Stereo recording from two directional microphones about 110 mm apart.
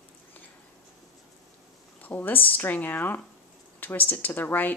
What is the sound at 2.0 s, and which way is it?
Speech, 15° left (ahead or behind).